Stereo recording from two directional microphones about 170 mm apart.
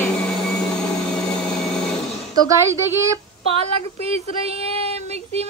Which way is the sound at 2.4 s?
15° right (ahead or behind).